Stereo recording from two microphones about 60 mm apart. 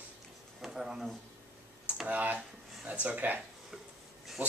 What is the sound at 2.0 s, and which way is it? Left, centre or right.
Speech, right.